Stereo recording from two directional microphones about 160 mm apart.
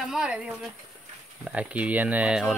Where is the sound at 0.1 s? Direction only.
5° right (ahead or behind).